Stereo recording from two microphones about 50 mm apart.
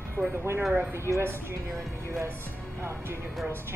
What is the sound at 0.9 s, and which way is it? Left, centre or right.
Speech, right.